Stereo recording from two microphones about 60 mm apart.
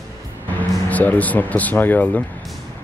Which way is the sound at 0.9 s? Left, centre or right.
Left.